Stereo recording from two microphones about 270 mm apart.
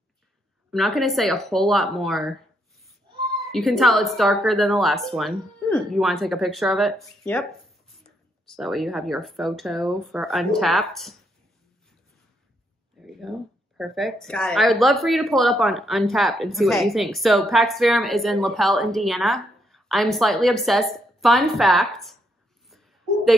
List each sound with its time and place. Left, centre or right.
0.7 s speech: centre
3.5 s speech: centre
8.5 s speech: centre
13.0 s a sound: centre
13.7 s speech: centre
22.7 s a sound: centre